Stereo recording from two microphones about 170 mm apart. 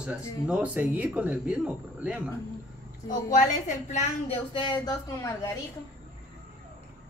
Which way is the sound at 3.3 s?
45° left (ahead or behind).